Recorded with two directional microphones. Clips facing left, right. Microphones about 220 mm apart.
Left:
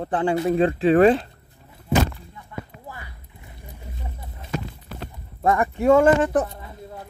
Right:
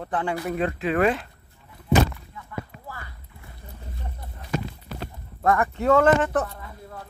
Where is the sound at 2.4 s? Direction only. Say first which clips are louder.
Right 1 dB; 20° left (ahead or behind).